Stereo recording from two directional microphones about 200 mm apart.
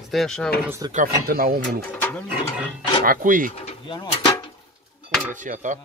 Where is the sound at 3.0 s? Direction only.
45° right (ahead or behind).